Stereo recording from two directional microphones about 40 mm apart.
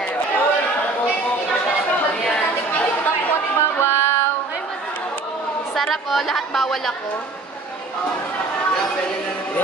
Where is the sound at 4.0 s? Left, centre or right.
Left.